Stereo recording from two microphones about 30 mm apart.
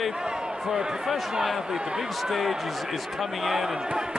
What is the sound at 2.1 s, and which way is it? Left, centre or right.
Speech, centre.